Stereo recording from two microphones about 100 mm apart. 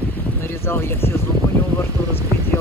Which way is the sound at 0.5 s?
25° left (ahead or behind).